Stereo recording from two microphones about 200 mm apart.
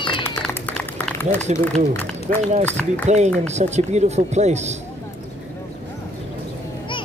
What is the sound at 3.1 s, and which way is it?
Speech, 35° right (ahead or behind).